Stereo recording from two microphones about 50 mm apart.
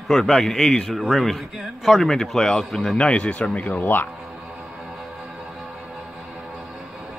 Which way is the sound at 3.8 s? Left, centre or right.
Left.